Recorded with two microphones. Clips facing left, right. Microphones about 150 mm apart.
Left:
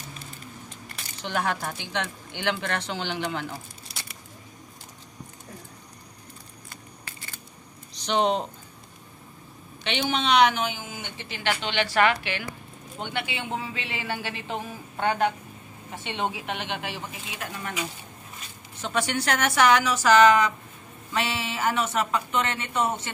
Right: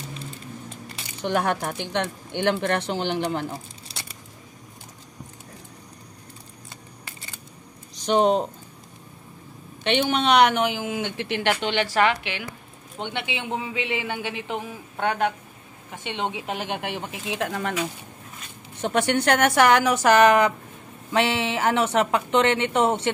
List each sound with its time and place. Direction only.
1.2 s speech: 50° right (ahead or behind)
7.9 s speech: 45° right (ahead or behind)
9.8 s speech: 55° right (ahead or behind)
11.9 s a woman's voice: 20° right (ahead or behind)
16.4 s speech: 45° right (ahead or behind); by 17.7 s 70° right (ahead or behind)
18.8 s speech: 55° right (ahead or behind)